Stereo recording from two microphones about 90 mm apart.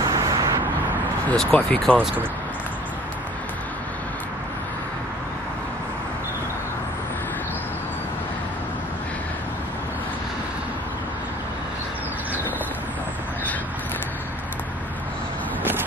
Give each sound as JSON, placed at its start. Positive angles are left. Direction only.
{"t": 0.0, "sound": "vehicle", "side_deg": -40}
{"t": 1.3, "sound": "speech", "side_deg": 5}